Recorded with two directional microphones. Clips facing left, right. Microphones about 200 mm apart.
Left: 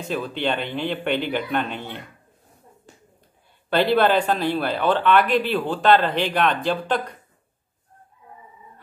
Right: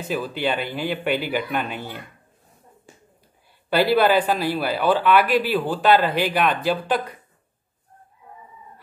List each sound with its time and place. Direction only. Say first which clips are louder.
0.1 s speech: even; 5° right (ahead or behind)
3.7 s speech: right 1 dB; 5° right (ahead or behind)